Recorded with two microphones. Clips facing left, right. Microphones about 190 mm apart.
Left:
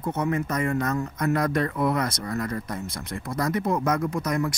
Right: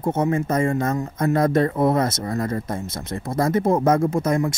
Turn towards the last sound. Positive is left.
turn(degrees=-25)  # may be behind; listen again after turning